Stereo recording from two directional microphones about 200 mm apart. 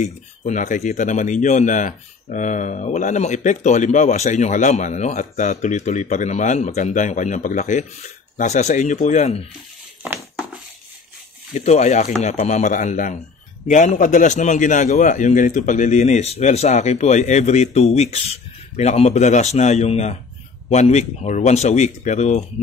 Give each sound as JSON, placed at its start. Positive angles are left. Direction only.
{"t": 0.0, "sound": "speech", "side_deg": 35}
{"t": 11.5, "sound": "speech", "side_deg": 35}